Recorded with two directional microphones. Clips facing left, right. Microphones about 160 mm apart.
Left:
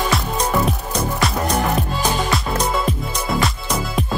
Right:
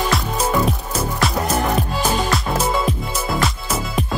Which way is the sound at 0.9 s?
5° right (ahead or behind).